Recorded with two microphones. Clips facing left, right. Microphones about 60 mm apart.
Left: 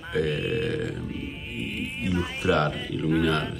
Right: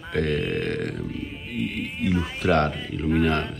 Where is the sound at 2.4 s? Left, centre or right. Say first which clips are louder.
Right 2 dB; right.